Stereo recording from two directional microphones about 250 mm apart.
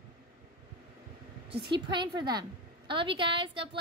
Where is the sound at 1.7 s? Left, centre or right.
Centre.